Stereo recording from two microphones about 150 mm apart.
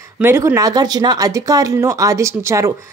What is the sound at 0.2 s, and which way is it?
A woman's voice, 15° right (ahead or behind).